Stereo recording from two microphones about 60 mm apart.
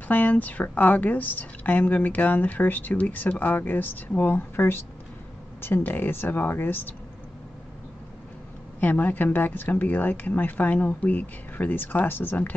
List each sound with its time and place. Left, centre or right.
0.1 s a woman's voice: left
8.7 s speech: left